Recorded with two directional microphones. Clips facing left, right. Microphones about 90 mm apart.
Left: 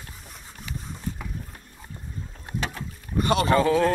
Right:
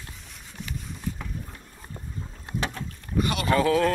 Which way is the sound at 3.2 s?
35° left (ahead or behind).